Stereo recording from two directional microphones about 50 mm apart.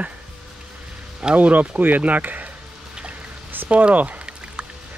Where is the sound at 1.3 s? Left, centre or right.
Right.